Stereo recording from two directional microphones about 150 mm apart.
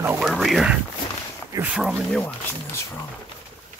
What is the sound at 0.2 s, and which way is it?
Speech, centre (ahead or behind).